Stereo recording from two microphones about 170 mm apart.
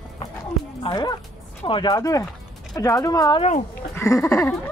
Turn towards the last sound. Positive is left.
turn(degrees=15)  # may be behind; listen again after turning